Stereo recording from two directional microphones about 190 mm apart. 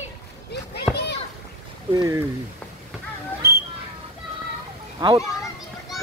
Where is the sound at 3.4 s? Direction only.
55° right (ahead or behind).